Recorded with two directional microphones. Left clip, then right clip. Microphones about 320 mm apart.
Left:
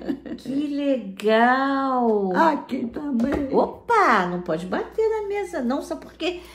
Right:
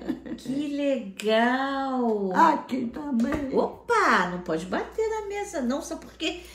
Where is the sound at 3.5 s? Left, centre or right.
Centre.